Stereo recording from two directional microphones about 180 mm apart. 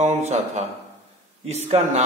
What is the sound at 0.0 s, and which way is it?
A man's voice, 40° right (ahead or behind).